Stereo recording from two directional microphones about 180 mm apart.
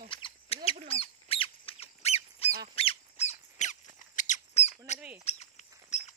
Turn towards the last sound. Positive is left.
turn(degrees=40)  # may be behind; listen again after turning